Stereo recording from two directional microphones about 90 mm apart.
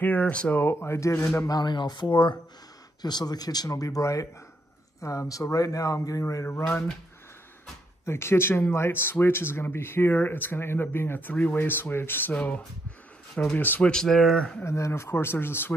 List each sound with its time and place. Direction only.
0.0 s speech: 20° left (ahead or behind)
1.4 s speech: 45° left (ahead or behind)
3.0 s speech: 50° left (ahead or behind); by 6.8 s 30° left (ahead or behind)
8.0 s speech: 30° left (ahead or behind); by 14.4 s centre (ahead or behind)
14.6 s speech: 30° left (ahead or behind)